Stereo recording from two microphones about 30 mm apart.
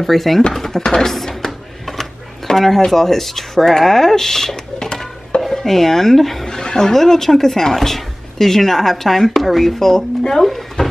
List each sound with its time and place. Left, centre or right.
0.0 s speech: centre
1.0 s drawer open or close: centre
2.5 s speech: centre
4.7 s a sound: left
5.6 s speech: centre
6.4 s speech: centre
9.8 s speech: centre
10.4 s a sound: centre